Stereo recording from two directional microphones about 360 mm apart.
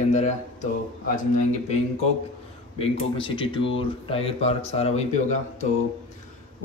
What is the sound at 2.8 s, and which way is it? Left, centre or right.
Speech, centre.